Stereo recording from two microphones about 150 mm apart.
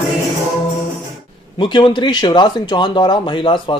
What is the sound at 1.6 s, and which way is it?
Speech, 30° left (ahead or behind).